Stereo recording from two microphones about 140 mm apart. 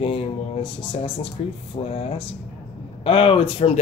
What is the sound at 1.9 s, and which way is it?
Speech, 45° left (ahead or behind).